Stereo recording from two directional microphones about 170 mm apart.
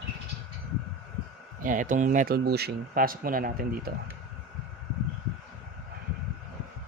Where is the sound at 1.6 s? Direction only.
50° right (ahead or behind).